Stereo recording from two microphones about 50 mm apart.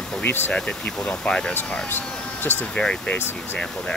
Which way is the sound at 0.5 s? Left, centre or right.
Centre.